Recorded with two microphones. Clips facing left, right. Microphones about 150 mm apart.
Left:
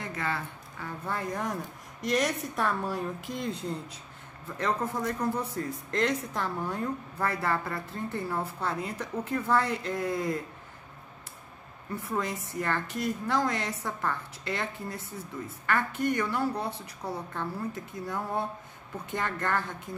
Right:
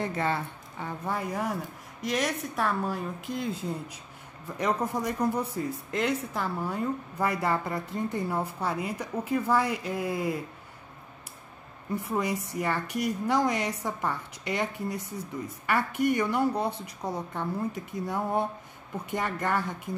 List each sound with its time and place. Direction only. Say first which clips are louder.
0.0 s speech: right 5 dB; 30° right (ahead or behind)
1.0 s a woman's voice: right 2 dB; 10° right (ahead or behind)
12.0 s speech: right 2 dB; 15° right (ahead or behind)